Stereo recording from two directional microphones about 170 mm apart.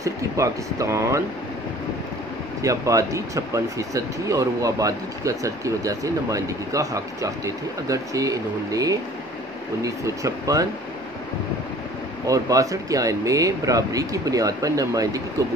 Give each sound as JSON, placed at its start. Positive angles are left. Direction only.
{"t": 0.0, "sound": "speech", "side_deg": -20}
{"t": 2.6, "sound": "speech", "side_deg": -20}
{"t": 12.3, "sound": "speech", "side_deg": -20}